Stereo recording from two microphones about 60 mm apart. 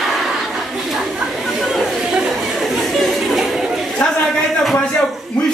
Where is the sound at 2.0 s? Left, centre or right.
Centre.